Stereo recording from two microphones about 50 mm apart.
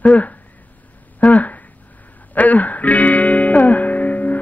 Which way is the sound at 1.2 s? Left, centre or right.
Left.